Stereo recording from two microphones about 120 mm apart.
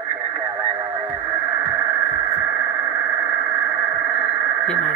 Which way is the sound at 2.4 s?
15° right (ahead or behind).